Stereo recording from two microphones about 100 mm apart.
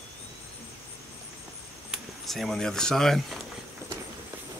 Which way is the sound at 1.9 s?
Centre (ahead or behind).